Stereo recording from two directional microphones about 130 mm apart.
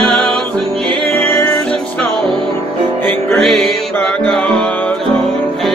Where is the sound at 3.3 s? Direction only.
Centre (ahead or behind).